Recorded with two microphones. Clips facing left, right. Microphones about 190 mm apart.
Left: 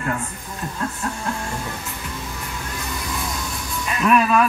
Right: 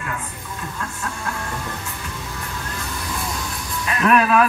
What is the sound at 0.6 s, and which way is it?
Speech, 30° left (ahead or behind).